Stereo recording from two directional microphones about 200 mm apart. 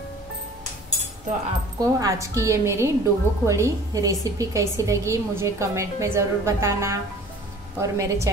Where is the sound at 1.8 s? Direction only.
15° right (ahead or behind).